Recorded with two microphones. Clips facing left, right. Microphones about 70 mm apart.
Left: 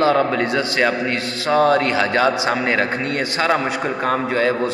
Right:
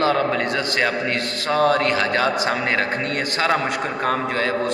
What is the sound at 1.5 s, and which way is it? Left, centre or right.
A man's voice, left.